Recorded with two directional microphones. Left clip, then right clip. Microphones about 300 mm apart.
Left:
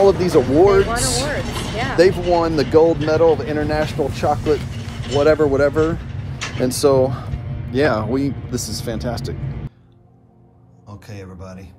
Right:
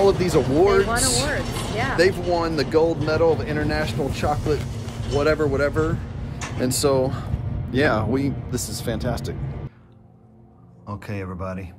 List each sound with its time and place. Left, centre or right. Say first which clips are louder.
0.0 s speech: left 5 dB; centre
10.9 s speech: right 5 dB; centre